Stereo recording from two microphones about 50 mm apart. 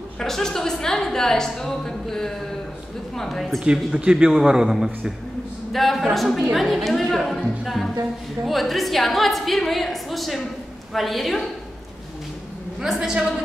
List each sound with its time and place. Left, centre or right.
0.2 s a woman's voice: centre
3.6 s a man's voice: centre
12.8 s a man's voice: centre